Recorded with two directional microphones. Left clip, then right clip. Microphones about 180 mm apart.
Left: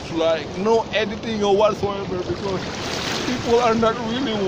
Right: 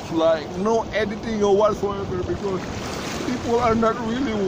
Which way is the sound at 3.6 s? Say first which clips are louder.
Left 1 dB; 10° right (ahead or behind).